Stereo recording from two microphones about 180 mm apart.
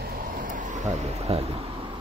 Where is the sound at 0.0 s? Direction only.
55° right (ahead or behind); by 1.7 s 35° right (ahead or behind).